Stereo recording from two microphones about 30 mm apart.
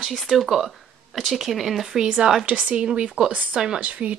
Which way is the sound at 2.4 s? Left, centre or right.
Right.